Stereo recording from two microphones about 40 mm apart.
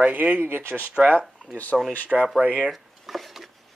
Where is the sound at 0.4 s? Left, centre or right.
Right.